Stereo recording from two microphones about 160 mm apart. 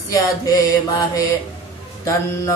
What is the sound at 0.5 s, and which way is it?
Mantra, 20° left (ahead or behind).